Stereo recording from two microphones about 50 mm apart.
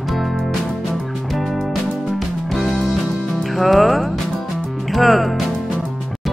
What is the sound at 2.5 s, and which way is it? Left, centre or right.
Music, centre.